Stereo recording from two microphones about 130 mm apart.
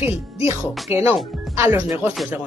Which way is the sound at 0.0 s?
20° right (ahead or behind).